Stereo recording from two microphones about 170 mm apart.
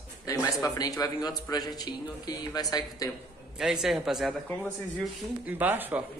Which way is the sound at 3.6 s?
5° right (ahead or behind).